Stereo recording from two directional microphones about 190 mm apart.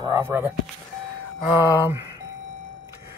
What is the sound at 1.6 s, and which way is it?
Music, 15° right (ahead or behind).